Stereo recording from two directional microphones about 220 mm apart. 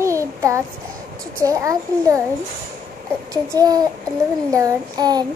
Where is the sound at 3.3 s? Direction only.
15° right (ahead or behind).